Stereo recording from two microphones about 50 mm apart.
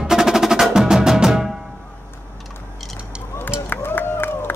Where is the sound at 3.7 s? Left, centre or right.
Left.